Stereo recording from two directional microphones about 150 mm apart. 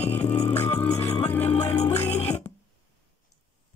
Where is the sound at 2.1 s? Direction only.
45° left (ahead or behind).